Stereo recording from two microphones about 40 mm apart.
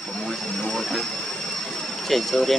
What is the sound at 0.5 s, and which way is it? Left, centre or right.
Vehicle, left.